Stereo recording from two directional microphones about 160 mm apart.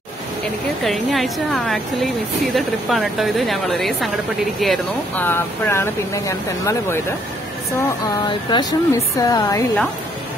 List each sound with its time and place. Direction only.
0.8 s speech: centre (ahead or behind)
5.2 s speech: 15° left (ahead or behind)
8.3 s speech: 30° left (ahead or behind)